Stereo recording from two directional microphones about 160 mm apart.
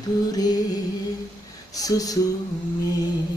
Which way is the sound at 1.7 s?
20° left (ahead or behind).